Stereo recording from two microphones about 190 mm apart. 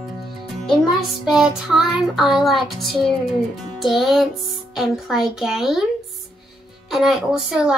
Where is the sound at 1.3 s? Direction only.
Centre (ahead or behind).